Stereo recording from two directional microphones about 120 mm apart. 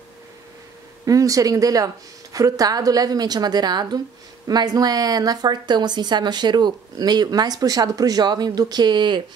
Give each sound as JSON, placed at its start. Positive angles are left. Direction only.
{"t": 1.0, "sound": "a woman's voice", "side_deg": -30}